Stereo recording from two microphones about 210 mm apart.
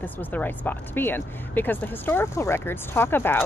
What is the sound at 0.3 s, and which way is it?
Speech, 10° left (ahead or behind).